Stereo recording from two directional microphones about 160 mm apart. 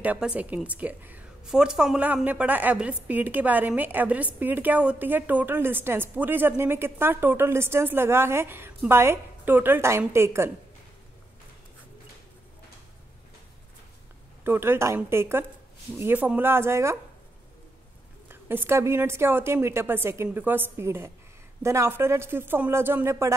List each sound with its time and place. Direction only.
0.0 s a woman's voice: 10° right (ahead or behind)
14.4 s a woman's voice: 15° right (ahead or behind)
18.3 s a woman's voice: 15° right (ahead or behind)